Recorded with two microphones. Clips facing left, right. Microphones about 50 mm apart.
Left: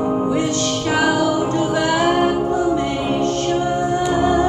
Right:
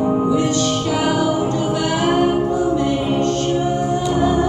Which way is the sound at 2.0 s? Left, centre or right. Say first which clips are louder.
Right 1 dB; left.